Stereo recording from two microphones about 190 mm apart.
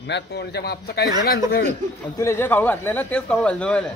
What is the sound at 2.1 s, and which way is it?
A man's voice, 15° left (ahead or behind).